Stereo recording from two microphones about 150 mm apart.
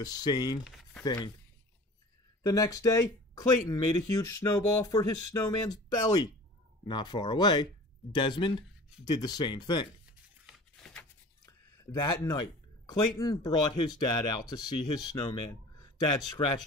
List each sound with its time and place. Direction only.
0.0 s speech: 25° left (ahead or behind)
2.4 s speech: 25° left (ahead or behind)
10.4 s a sound: 5° left (ahead or behind)
11.4 s speech: 25° left (ahead or behind)